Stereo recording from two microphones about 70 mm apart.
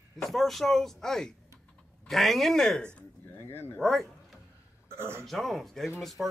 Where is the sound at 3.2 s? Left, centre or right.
Left.